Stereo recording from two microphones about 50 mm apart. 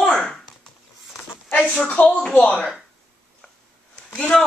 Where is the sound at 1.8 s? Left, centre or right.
Left.